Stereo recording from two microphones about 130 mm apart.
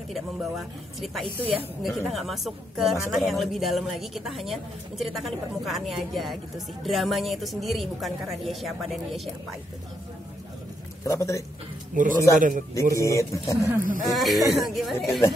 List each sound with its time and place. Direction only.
0.1 s a woman's voice: centre (ahead or behind)
11.1 s speech: 25° left (ahead or behind)
11.9 s speech: 90° right
12.9 s speech: 25° left (ahead or behind)
13.7 s speech: 90° right
14.1 s a woman's voice: centre (ahead or behind)